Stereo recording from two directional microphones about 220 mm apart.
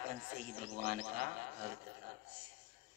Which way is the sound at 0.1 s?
40° right (ahead or behind).